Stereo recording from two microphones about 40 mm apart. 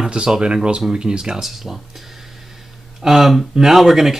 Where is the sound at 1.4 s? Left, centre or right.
Centre.